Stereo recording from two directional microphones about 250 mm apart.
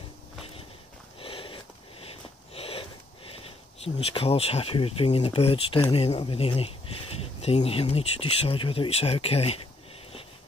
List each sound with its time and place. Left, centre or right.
1.2 s sniff: left
5.8 s speech: left